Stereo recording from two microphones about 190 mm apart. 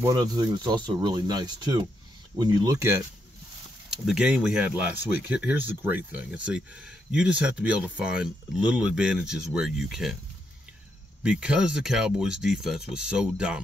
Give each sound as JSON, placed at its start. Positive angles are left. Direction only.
{"t": 0.0, "sound": "speech", "side_deg": -20}
{"t": 3.9, "sound": "speech", "side_deg": -5}
{"t": 11.2, "sound": "speech", "side_deg": -5}